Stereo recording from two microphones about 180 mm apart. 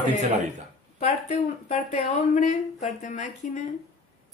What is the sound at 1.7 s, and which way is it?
A woman's voice, 40° left (ahead or behind).